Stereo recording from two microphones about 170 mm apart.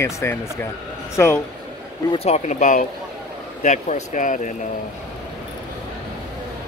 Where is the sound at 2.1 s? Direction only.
40° left (ahead or behind).